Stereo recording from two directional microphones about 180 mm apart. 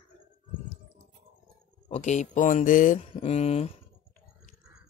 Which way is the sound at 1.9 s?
40° left (ahead or behind).